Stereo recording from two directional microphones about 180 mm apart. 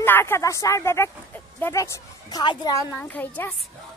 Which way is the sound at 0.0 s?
10° left (ahead or behind).